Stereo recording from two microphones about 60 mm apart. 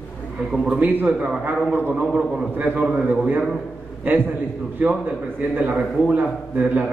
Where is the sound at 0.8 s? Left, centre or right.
Right.